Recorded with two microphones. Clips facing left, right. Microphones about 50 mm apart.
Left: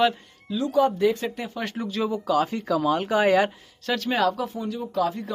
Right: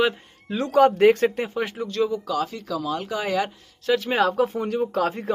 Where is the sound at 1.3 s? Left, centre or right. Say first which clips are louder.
Right 5 dB; right.